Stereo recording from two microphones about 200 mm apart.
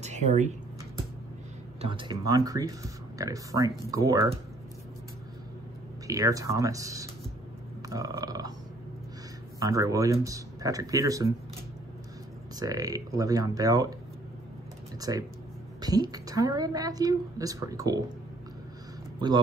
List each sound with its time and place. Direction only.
0.0 s speech: 35° right (ahead or behind)
1.8 s speech: 25° right (ahead or behind)
6.0 s speech: 15° right (ahead or behind)
7.9 s burping: 15° right (ahead or behind)
9.6 s speech: 15° right (ahead or behind)
12.5 s speech: 15° right (ahead or behind)
15.0 s speech: 15° right (ahead or behind)
19.1 s speech: 20° right (ahead or behind)